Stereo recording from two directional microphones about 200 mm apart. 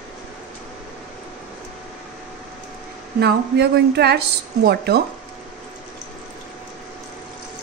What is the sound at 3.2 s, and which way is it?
Speech, 55° right (ahead or behind).